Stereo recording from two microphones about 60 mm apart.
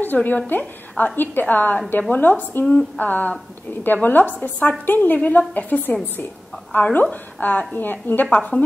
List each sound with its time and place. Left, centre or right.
0.0 s a woman's voice: left
8.3 s a woman's voice: left